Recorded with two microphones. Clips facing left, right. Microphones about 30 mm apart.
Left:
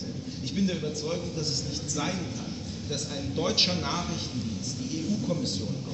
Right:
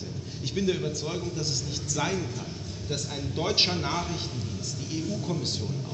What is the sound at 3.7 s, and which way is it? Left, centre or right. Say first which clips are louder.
Speech: even; centre.